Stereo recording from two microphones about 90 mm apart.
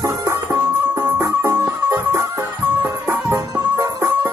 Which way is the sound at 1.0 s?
25° right (ahead or behind).